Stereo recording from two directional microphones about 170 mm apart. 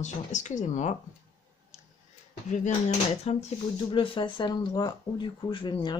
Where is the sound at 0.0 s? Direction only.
45° left (ahead or behind).